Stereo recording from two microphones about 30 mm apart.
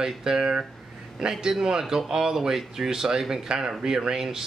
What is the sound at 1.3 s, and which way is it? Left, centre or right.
Speech, right.